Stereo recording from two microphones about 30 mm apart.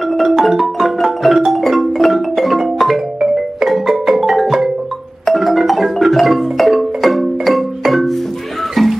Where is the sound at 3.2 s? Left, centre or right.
Centre.